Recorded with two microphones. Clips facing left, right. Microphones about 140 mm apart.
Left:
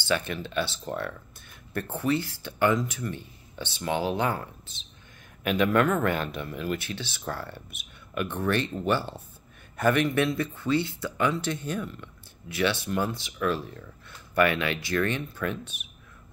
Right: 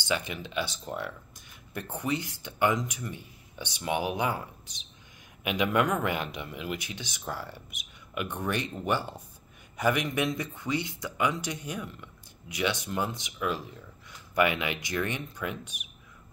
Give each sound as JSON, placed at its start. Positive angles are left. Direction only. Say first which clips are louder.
{"t": 0.0, "sound": "speech", "louder": "left 3 dB", "side_deg": -15}